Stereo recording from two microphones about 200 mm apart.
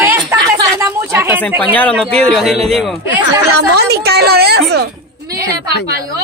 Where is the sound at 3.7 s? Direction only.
55° right (ahead or behind).